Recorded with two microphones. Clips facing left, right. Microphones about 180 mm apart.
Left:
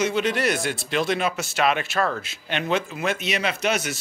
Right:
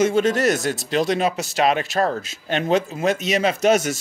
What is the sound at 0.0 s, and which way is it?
Speech, 45° right (ahead or behind).